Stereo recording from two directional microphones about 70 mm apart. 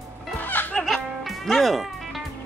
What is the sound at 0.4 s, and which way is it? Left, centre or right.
Music, left.